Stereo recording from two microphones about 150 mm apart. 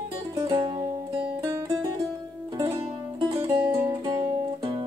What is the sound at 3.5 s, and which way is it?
Music, 30° right (ahead or behind).